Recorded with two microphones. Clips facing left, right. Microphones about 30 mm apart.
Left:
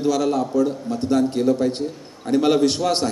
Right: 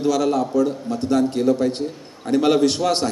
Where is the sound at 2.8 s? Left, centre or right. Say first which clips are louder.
Right 1 dB; right.